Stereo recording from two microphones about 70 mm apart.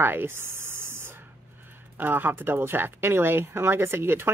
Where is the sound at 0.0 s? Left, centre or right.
Right.